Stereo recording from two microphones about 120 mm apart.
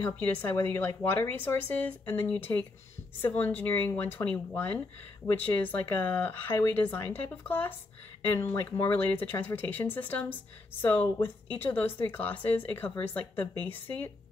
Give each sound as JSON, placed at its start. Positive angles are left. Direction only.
{"t": 0.0, "sound": "speech", "side_deg": 15}